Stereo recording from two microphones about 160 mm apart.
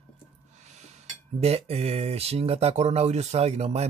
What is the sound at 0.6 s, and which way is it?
Cutlery, 45° right (ahead or behind).